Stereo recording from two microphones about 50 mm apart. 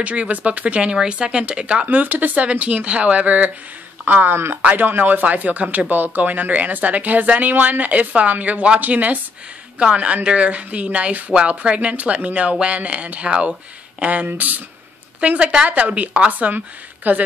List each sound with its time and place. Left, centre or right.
0.0 s a woman's voice: right
1.9 s a woman's voice: right
15.1 s a woman's voice: right